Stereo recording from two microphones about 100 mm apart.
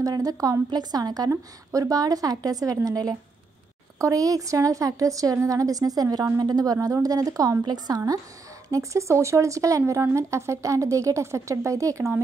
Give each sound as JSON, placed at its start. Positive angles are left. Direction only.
{"t": 0.0, "sound": "speech", "side_deg": -40}
{"t": 8.6, "sound": "speech", "side_deg": -30}